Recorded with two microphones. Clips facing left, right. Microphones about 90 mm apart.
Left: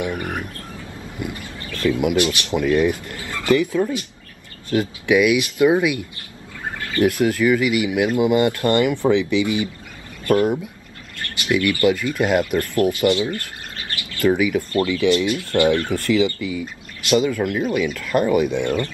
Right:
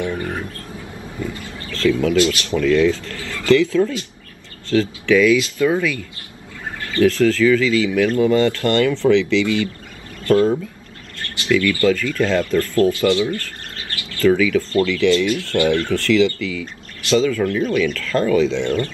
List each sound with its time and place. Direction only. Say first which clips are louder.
0.0 s bird: right 1 dB; 15° left (ahead or behind)
1.2 s speech: right 1 dB; 20° left (ahead or behind)